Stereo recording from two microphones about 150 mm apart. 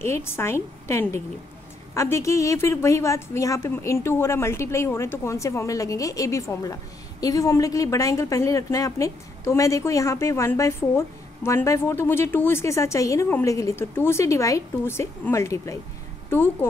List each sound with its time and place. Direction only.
0.0 s a woman's voice: 15° left (ahead or behind)